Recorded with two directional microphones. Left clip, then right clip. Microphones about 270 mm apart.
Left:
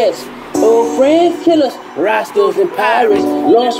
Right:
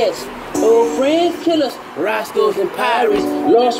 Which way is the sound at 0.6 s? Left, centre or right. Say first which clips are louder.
Left 3 dB; left.